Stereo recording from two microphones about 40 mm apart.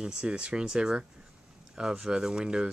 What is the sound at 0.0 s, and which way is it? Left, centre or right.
Speech, centre.